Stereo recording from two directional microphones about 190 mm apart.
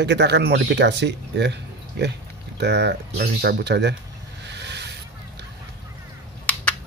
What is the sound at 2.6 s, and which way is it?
Speech, 65° right (ahead or behind).